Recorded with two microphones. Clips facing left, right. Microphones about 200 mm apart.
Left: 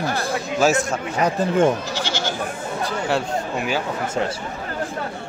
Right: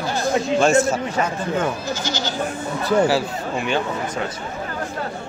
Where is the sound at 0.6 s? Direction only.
Centre (ahead or behind).